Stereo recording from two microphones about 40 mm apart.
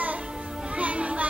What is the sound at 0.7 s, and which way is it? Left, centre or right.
Music, right.